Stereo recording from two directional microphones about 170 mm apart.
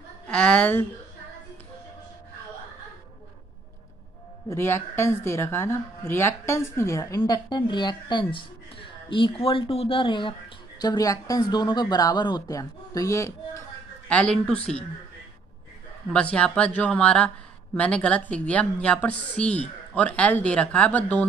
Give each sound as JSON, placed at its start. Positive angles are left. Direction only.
{"t": 0.3, "sound": "a woman's voice", "side_deg": 5}
{"t": 4.5, "sound": "a woman's voice", "side_deg": 15}
{"t": 14.0, "sound": "a woman's voice", "side_deg": 5}
{"t": 16.1, "sound": "a woman's voice", "side_deg": 5}